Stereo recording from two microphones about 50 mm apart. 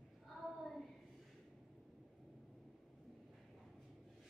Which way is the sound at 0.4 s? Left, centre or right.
Centre.